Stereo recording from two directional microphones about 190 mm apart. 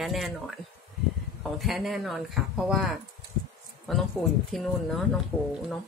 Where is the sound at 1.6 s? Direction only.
Centre (ahead or behind).